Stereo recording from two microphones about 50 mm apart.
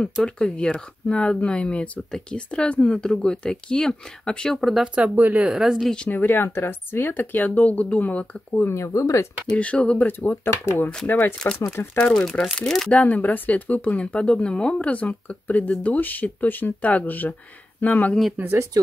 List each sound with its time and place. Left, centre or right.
0.2 s speech: centre
4.6 s speech: centre
4.9 s speech: right
5.5 s speech: centre
6.0 s speech: left
8.6 s speech: left
9.6 s speech: left
10.4 s speech: left
11.1 s speech: left
11.7 s speech: left
12.0 s speech: centre
12.9 s speech: left